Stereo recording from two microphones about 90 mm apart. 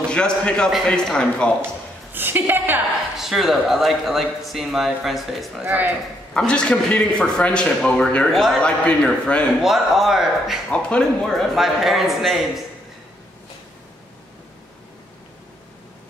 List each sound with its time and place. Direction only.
0.0 s a man's voice: 10° left (ahead or behind)
2.1 s a woman's voice: 20° right (ahead or behind)
3.2 s speech: 5° right (ahead or behind)
5.7 s a woman's voice: 20° right (ahead or behind)
6.3 s a man's voice: 10° left (ahead or behind)
8.3 s a man's voice: centre (ahead or behind)
9.6 s speech: 5° right (ahead or behind)
10.7 s speech: 10° left (ahead or behind)